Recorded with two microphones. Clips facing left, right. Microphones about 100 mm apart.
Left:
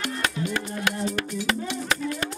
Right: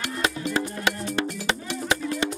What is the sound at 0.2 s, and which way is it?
Music, 25° right (ahead or behind).